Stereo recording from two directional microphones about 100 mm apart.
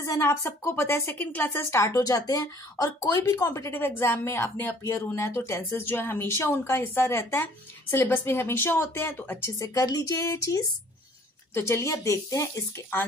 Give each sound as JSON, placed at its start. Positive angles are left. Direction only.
{"t": 0.0, "sound": "a woman's voice", "side_deg": 30}
{"t": 9.6, "sound": "speech", "side_deg": 40}